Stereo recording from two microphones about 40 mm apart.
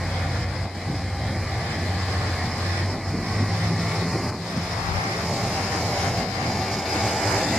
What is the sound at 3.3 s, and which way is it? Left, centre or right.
Vehicle, centre.